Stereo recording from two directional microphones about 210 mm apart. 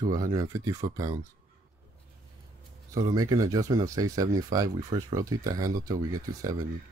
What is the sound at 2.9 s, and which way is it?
Speech, 15° right (ahead or behind).